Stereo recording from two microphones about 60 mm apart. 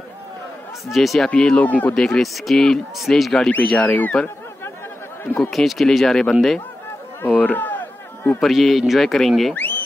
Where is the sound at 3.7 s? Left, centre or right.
Left.